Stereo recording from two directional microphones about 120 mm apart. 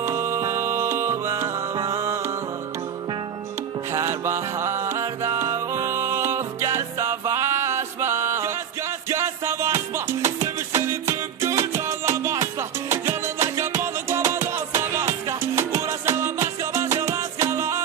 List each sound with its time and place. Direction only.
0.0 s music: 20° right (ahead or behind)
3.9 s music: 25° right (ahead or behind)